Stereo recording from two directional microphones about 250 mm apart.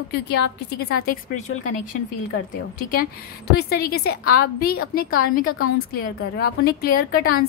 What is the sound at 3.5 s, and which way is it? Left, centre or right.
A woman's voice, left.